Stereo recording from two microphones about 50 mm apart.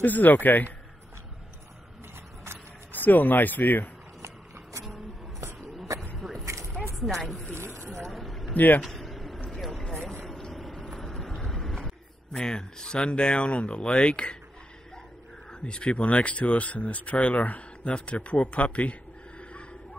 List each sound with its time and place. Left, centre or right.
0.0 s speech: left
2.9 s speech: left
6.1 s a sound: centre
6.4 s a sound: right
7.0 s speech: centre
7.5 s boat: right
8.1 s a sound: centre
8.5 s speech: left
8.8 s a sound: centre
9.6 s vehicle: centre
12.4 s speech: centre
15.6 s speech: left